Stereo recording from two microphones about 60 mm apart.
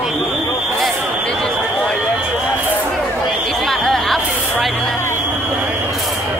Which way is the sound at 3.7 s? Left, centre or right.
Centre.